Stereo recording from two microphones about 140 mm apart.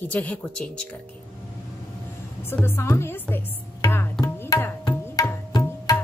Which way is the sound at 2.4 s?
15° left (ahead or behind).